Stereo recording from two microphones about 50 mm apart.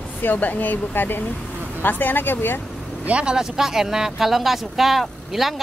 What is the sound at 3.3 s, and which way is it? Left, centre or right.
Speech, centre.